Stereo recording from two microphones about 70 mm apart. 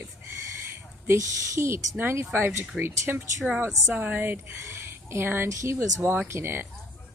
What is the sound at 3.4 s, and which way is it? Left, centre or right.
Speech, centre.